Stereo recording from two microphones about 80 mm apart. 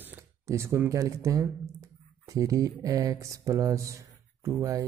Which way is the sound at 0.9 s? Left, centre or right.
Right.